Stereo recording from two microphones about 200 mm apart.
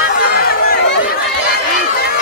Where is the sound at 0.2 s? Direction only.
50° left (ahead or behind).